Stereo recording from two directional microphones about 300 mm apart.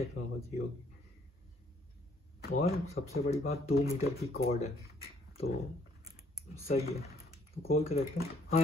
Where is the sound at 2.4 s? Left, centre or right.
Left.